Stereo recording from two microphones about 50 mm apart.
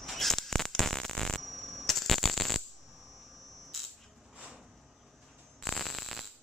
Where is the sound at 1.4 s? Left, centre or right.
Centre.